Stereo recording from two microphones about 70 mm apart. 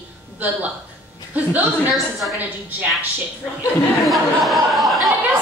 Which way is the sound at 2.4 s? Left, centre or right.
Right.